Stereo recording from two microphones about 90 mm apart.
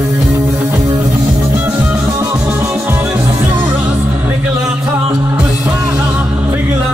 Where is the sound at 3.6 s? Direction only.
20° right (ahead or behind).